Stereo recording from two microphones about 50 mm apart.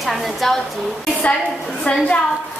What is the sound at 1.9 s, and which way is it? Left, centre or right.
Speech, left.